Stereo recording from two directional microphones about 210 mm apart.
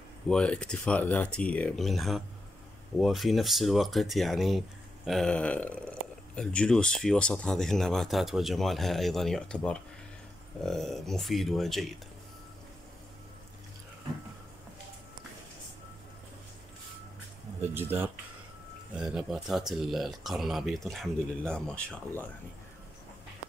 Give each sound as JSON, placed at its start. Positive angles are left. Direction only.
{"t": 0.3, "sound": "speech", "side_deg": 5}
{"t": 17.7, "sound": "speech", "side_deg": -10}